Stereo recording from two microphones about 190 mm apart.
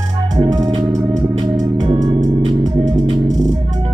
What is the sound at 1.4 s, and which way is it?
Organ, 20° right (ahead or behind).